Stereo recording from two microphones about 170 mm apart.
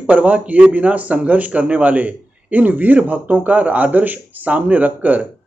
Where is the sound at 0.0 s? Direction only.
10° right (ahead or behind).